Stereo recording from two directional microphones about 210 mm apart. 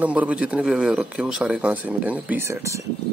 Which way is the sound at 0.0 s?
5° right (ahead or behind).